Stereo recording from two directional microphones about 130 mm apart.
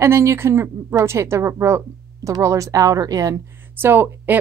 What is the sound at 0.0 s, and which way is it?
A woman's voice, 20° right (ahead or behind).